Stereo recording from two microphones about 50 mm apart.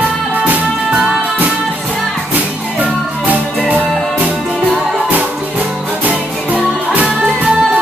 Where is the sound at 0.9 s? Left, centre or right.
Centre.